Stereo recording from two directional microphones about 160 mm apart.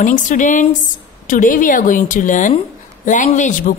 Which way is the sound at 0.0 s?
55° left (ahead or behind).